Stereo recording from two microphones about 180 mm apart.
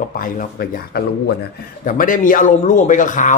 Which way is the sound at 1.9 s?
50° left (ahead or behind).